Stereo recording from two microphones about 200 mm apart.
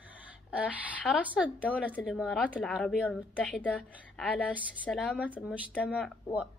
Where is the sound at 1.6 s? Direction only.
5° left (ahead or behind).